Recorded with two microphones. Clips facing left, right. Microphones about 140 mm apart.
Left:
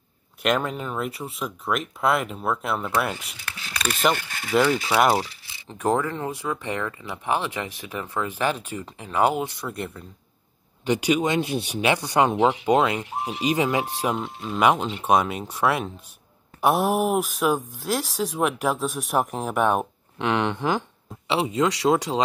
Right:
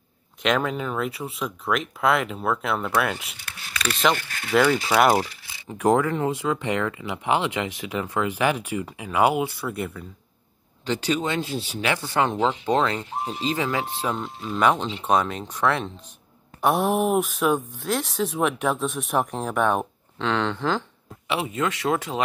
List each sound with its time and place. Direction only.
0.4 s speech: centre (ahead or behind)
4.4 s speech: 5° left (ahead or behind)
5.7 s speech: 15° right (ahead or behind)
10.9 s speech: 10° left (ahead or behind)
14.1 s speech: centre (ahead or behind); by 22.2 s 15° left (ahead or behind)